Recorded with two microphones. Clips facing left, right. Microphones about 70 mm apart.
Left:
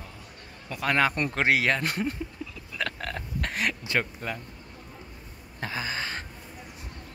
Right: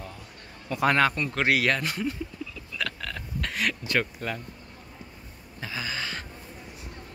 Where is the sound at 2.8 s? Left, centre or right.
Left; by 4.4 s centre.